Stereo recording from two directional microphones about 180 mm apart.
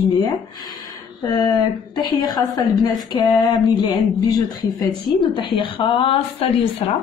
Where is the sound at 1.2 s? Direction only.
20° left (ahead or behind).